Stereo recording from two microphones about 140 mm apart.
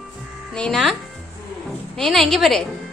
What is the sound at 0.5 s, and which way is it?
Speech, 5° left (ahead or behind).